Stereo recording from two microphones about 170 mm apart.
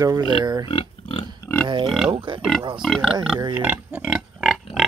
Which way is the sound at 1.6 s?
30° right (ahead or behind).